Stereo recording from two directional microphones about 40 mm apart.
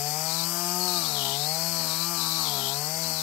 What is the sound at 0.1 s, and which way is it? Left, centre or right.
Chainsaw, right.